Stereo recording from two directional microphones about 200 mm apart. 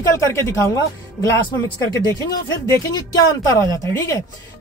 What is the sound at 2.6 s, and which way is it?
Speech, 15° left (ahead or behind).